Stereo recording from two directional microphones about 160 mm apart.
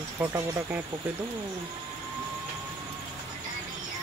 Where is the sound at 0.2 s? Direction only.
15° right (ahead or behind).